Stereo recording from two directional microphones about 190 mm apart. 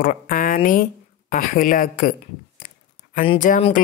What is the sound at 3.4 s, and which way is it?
Speech, 45° left (ahead or behind).